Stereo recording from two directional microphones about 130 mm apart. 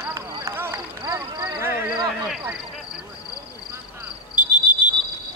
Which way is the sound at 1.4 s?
15° right (ahead or behind).